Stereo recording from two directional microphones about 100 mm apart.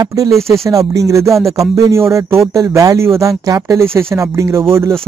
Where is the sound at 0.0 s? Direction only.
35° right (ahead or behind).